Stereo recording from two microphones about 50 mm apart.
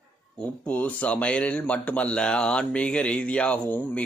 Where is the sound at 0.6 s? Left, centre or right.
Left.